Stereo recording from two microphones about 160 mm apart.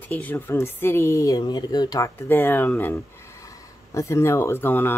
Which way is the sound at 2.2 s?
15° left (ahead or behind).